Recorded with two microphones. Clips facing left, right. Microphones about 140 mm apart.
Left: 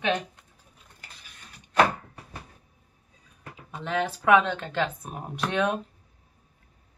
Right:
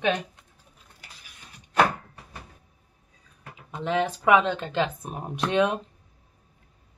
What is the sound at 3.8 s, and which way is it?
Speech, 15° right (ahead or behind).